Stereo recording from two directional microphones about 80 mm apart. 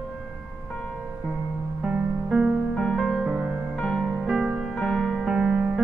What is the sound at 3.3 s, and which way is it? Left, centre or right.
Music, centre.